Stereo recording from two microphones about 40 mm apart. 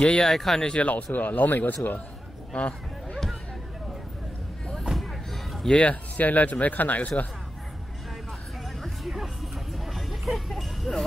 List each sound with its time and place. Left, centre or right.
0.2 s speech: centre
0.7 s speech: left
2.5 s a sound: left
4.9 s a sound: centre
5.7 s speech: left
8.8 s music: centre